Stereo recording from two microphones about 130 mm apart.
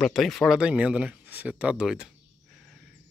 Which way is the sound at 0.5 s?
10° right (ahead or behind).